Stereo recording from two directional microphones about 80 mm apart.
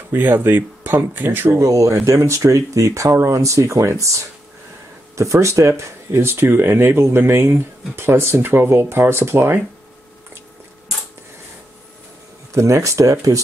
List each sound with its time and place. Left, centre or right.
0.1 s speech: right
1.5 s speech: right
12.5 s speech: right